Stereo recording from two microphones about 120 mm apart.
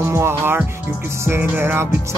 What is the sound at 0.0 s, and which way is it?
Music, 20° right (ahead or behind).